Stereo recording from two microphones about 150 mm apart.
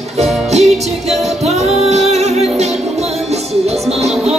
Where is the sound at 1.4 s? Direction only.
45° right (ahead or behind).